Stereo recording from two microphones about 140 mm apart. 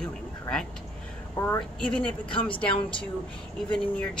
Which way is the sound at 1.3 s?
20° left (ahead or behind).